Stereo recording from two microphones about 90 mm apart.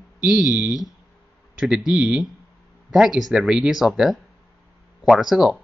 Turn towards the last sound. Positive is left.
turn(degrees=-5)  # may be behind; listen again after turning